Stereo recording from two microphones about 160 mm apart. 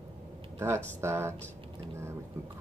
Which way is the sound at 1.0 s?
15° right (ahead or behind).